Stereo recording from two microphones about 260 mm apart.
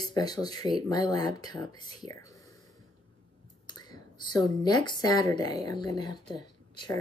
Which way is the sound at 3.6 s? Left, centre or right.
Centre.